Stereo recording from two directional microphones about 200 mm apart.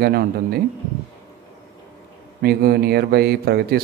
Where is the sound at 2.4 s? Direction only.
50° right (ahead or behind).